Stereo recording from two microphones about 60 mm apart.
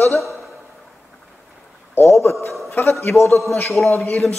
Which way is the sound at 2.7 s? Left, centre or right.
Left.